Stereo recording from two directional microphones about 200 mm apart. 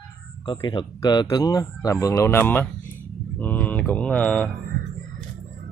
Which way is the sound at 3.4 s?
10° left (ahead or behind).